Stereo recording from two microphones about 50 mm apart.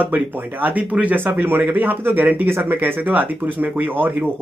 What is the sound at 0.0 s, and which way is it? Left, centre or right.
Speech, right.